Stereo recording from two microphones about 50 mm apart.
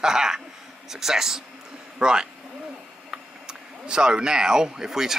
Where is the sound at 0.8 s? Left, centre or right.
Centre.